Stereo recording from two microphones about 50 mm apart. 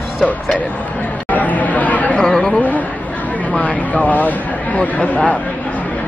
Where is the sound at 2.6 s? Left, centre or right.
Left.